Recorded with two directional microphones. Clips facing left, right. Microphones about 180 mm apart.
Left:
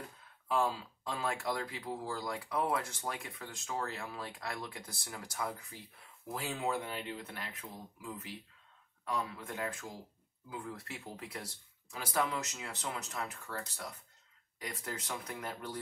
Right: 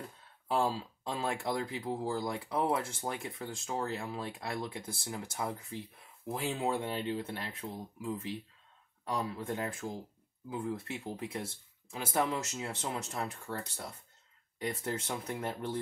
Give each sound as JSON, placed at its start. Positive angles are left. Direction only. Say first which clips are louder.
{"t": 0.5, "sound": "speech", "louder": "right 2 dB", "side_deg": -30}